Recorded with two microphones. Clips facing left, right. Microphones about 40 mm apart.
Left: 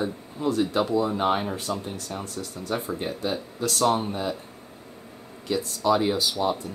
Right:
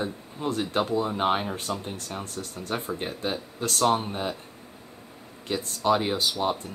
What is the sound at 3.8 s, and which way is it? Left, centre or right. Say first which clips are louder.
Speech: even; right.